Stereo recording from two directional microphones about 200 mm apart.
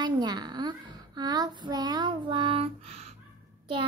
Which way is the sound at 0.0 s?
20° right (ahead or behind).